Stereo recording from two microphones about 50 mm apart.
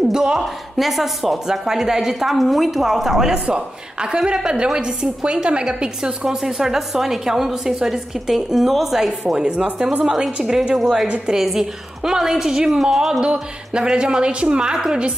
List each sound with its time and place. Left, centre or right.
0.1 s a woman's voice: centre
9.3 s a woman's voice: centre
11.1 s a woman's voice: centre